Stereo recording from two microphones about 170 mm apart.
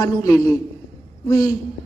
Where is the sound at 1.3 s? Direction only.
20° left (ahead or behind).